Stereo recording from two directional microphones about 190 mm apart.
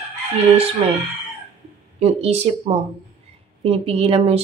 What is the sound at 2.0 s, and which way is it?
Speech, 35° right (ahead or behind).